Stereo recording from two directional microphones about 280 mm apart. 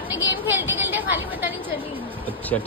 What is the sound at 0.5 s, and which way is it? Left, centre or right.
Speech, centre.